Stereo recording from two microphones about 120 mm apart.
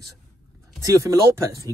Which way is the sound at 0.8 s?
25° right (ahead or behind).